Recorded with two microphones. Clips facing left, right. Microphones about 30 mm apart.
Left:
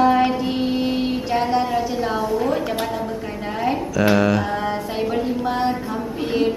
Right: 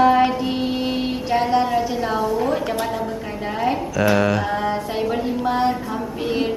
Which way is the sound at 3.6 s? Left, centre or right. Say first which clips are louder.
Even; centre.